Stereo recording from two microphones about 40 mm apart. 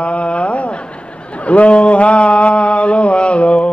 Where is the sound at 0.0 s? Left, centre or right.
Left.